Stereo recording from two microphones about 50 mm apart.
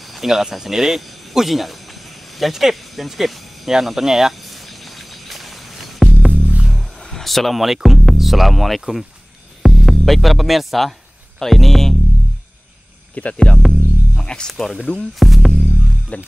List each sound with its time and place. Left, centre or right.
0.1 s speech: centre
2.3 s cricket: centre
6.2 s music: right
7.1 s speech: centre
11.3 s music: centre
13.1 s speech: left
13.6 s music: centre
14.2 s speech: centre
14.5 s speech: centre
15.1 s music: centre
16.1 s speech: left